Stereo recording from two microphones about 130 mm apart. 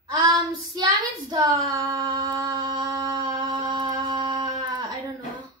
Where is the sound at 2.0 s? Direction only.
30° right (ahead or behind).